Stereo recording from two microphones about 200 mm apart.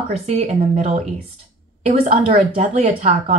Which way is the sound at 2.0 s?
40° right (ahead or behind).